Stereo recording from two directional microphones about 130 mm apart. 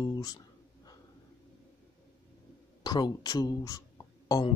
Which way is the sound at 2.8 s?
35° left (ahead or behind).